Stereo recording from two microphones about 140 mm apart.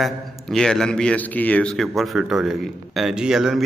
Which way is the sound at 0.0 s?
Centre (ahead or behind).